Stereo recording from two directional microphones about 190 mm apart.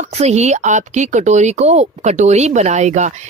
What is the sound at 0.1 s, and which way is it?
Speech, 35° right (ahead or behind).